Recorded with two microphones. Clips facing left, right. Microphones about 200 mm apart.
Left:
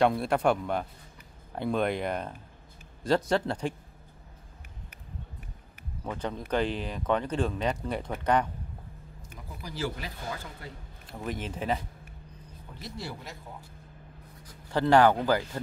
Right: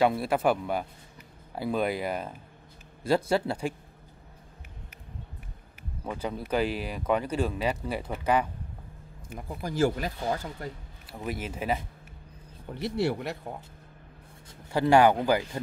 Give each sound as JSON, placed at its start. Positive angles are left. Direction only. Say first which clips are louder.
{"t": 0.0, "sound": "speech", "louder": "even", "side_deg": -5}
{"t": 6.0, "sound": "speech", "louder": "right 1 dB", "side_deg": -10}
{"t": 9.6, "sound": "speech", "louder": "right 8 dB", "side_deg": -50}
{"t": 11.1, "sound": "speech", "louder": "right 1 dB", "side_deg": -10}
{"t": 12.7, "sound": "speech", "louder": "right 12 dB", "side_deg": -65}
{"t": 14.7, "sound": "speech", "louder": "right 1 dB", "side_deg": -10}